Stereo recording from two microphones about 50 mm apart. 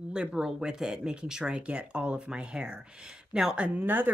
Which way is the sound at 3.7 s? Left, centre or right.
Right.